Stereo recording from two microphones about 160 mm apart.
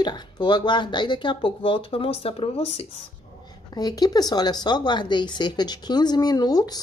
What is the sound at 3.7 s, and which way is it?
Speech, 25° left (ahead or behind).